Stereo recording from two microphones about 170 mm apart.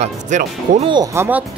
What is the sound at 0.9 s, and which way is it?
Speech, 20° right (ahead or behind).